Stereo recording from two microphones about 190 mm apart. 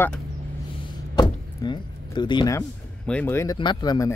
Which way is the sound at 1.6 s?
25° left (ahead or behind).